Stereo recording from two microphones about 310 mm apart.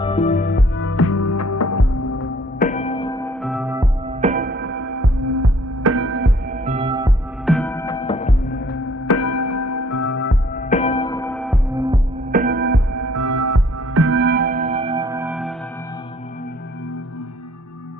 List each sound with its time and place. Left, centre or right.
0.0 s music: centre; by 2.1 s left
2.6 s music: left; by 3.9 s centre
4.1 s music: right
4.8 s music: right
6.6 s music: centre
7.4 s music: centre; by 8.7 s left
9.1 s music: left
10.1 s music: left; by 11.6 s centre
11.7 s music: centre
12.3 s music: right
12.9 s music: right
13.9 s music: right; by 15.5 s centre